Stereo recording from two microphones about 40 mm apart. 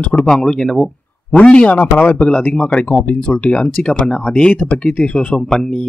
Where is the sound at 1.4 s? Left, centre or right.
Left.